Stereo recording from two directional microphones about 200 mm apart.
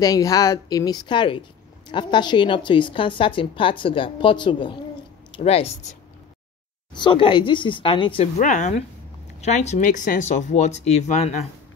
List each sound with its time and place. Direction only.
0.0 s a woman's voice: 15° left (ahead or behind)
8.4 s speech: 40° left (ahead or behind)